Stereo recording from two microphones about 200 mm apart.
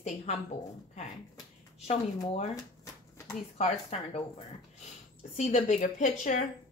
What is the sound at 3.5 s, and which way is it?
Speech, 30° left (ahead or behind).